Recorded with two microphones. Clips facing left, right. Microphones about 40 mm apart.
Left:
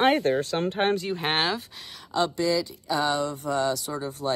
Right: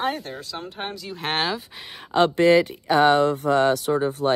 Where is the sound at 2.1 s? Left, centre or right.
Right.